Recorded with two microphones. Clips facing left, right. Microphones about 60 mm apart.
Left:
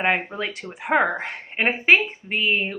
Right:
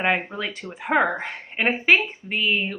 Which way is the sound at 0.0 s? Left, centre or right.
Left.